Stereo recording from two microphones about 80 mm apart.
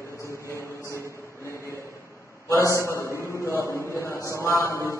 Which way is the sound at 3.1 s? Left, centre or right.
Left.